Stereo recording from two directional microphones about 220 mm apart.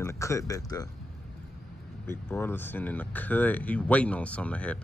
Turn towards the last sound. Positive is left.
turn(degrees=5)  # may be behind; listen again after turning